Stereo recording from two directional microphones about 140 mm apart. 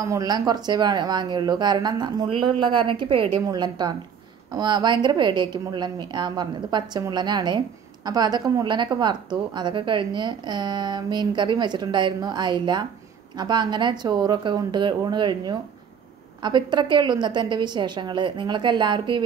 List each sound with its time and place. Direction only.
0.0 s a woman's voice: 25° right (ahead or behind)